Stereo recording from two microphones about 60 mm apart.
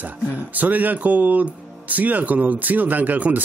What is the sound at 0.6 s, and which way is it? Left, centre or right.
Speech, right.